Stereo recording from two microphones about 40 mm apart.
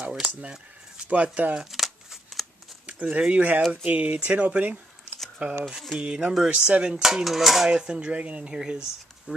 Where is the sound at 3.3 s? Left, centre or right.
Right.